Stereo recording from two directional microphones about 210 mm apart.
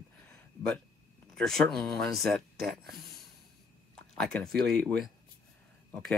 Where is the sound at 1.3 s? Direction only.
5° left (ahead or behind).